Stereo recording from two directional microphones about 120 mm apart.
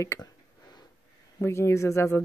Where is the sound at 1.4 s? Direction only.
20° left (ahead or behind).